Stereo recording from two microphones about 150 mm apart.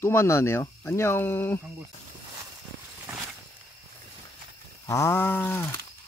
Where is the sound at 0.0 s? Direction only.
15° left (ahead or behind).